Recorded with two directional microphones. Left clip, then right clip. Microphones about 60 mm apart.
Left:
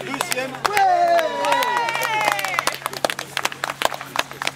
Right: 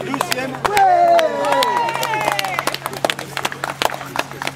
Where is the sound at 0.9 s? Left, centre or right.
Left.